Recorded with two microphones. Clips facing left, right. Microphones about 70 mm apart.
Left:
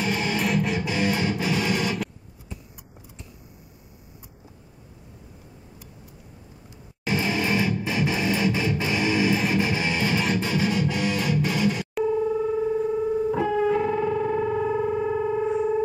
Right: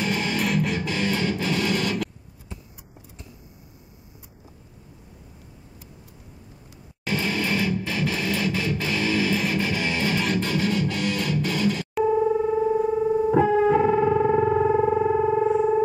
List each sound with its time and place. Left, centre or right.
0.0 s music: centre
0.7 s music: centre
7.1 s music: centre
12.0 s dial tone: centre
13.3 s music: centre
15.4 s synthesizer: centre